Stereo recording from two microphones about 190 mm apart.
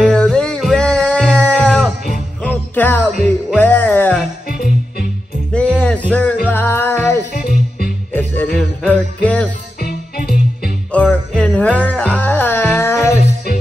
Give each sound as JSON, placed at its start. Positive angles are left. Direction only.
{"t": 0.0, "sound": "music", "side_deg": 5}
{"t": 3.2, "sound": "music", "side_deg": 0}
{"t": 4.5, "sound": "music", "side_deg": 50}
{"t": 5.5, "sound": "music", "side_deg": 5}
{"t": 7.3, "sound": "music", "side_deg": 45}
{"t": 8.1, "sound": "music", "side_deg": 10}
{"t": 8.5, "sound": "jingle bell", "side_deg": 5}
{"t": 9.8, "sound": "music", "side_deg": 50}
{"t": 10.9, "sound": "jingle bell", "side_deg": 5}